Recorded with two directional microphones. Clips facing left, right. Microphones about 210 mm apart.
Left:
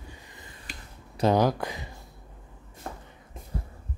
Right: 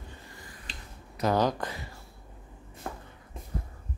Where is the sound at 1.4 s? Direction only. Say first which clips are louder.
Left 3 dB; 10° left (ahead or behind).